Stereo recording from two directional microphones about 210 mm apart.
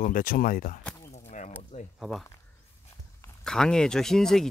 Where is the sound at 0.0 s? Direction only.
40° left (ahead or behind).